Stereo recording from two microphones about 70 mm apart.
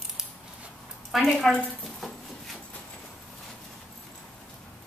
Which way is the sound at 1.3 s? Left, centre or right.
Centre.